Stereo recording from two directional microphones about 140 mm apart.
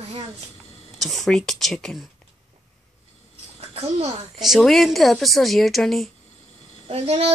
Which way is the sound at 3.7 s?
50° right (ahead or behind).